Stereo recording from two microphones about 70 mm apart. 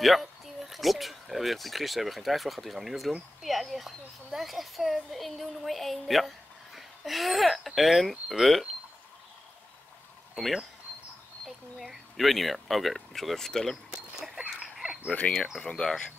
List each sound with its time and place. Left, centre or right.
0.0 s a child's voice: centre
10.3 s speech: centre
13.8 s a sound: centre
15.0 s speech: left
15.3 s a child's voice: centre
15.6 s speech: centre